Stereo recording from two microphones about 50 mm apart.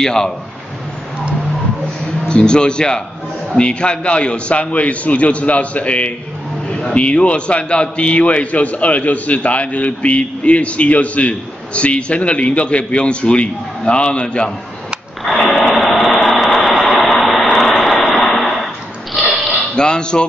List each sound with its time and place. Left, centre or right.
0.0 s speech: centre
2.2 s a man's voice: centre
15.3 s vehicle: centre
18.2 s a sound: centre
19.7 s speech: centre